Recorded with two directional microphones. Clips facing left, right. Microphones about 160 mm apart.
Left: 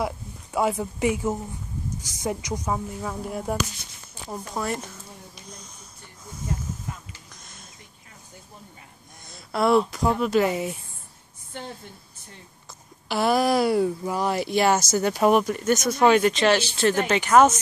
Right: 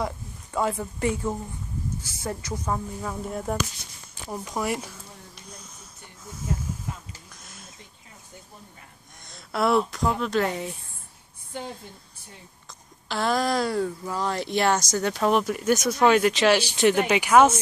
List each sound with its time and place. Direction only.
0.0 s speech: 10° left (ahead or behind)
4.5 s speech: 10° right (ahead or behind)
9.3 s speech: centre (ahead or behind)
13.1 s speech: 10° left (ahead or behind); by 17.6 s 10° right (ahead or behind)